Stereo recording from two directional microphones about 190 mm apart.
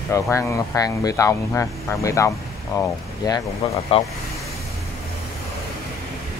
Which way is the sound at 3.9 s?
30° left (ahead or behind).